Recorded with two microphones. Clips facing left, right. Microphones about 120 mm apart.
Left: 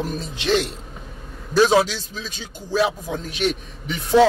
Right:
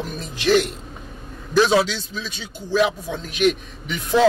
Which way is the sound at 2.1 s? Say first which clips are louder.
Right 2 dB; 35° left (ahead or behind).